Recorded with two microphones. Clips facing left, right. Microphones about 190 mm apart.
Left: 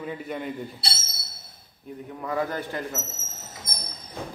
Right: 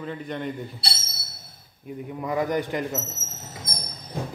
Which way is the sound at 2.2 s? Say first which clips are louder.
Right 3 dB; 15° right (ahead or behind).